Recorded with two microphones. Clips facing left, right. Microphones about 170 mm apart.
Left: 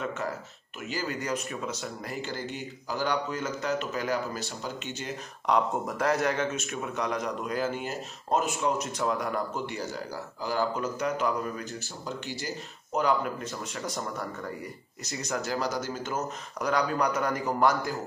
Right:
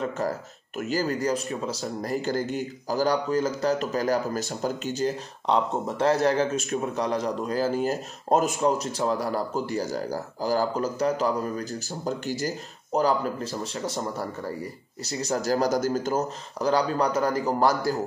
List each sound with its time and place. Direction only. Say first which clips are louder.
0.0 s speech: right 5 dB; 35° right (ahead or behind)